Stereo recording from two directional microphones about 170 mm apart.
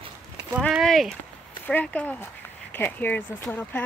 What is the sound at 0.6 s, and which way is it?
Speech, centre (ahead or behind).